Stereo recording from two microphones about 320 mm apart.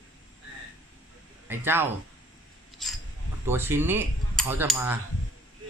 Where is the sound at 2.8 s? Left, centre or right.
Centre.